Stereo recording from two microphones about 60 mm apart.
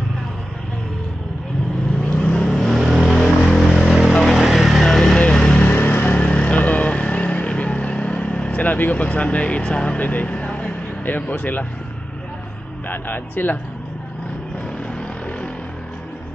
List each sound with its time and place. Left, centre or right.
2.0 s vehicle: centre
2.4 s vehicle: centre
4.1 s a sound: centre
4.8 s vehicle: centre
5.6 s vehicle: left
10.0 s speech: left
11.1 s speech: left
12.8 s speech: left